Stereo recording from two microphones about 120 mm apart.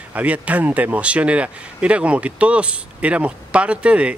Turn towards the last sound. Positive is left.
turn(degrees=-10)  # may be behind; listen again after turning